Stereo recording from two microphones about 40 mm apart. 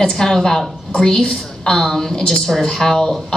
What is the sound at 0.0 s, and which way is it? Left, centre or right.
A woman's voice, centre.